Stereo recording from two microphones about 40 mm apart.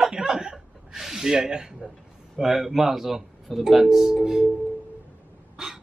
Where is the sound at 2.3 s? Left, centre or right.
Centre.